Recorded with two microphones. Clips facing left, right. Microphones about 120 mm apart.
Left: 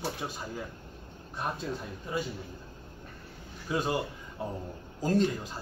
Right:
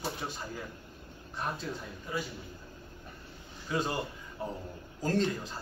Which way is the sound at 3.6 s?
15° left (ahead or behind).